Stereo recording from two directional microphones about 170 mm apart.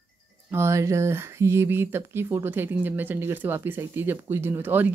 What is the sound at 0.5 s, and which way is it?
Speech, 15° right (ahead or behind).